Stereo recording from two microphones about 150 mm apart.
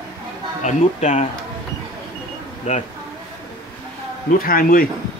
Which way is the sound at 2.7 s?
50° left (ahead or behind).